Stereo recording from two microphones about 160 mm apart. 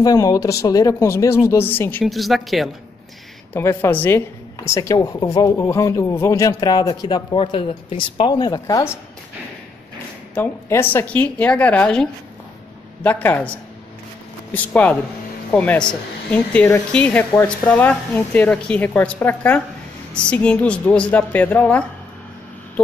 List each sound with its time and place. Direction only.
0.0 s speech: 25° left (ahead or behind)
2.0 s speech: centre (ahead or behind)
3.5 s speech: 15° left (ahead or behind)
10.3 s speech: 15° left (ahead or behind)